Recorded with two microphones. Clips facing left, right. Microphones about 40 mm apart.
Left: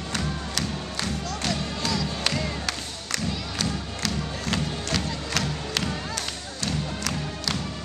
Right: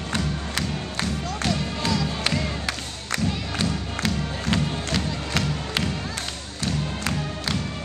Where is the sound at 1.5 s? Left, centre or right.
Centre.